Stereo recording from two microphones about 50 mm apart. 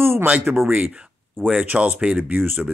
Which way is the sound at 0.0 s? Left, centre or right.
Right.